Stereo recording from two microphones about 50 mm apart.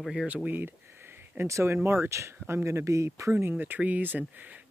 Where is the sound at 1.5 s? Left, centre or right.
Right.